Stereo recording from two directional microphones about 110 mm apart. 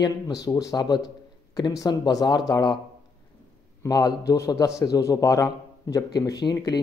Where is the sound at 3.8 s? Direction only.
35° left (ahead or behind).